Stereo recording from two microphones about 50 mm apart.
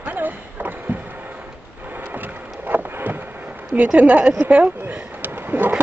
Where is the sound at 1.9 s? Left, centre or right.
Right.